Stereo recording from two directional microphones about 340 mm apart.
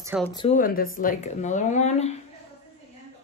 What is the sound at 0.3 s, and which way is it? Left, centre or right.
Speech, centre.